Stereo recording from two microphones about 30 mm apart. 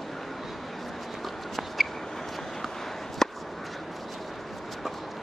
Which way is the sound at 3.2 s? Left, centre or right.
Centre.